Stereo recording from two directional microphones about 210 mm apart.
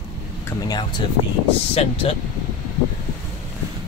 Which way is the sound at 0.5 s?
20° left (ahead or behind).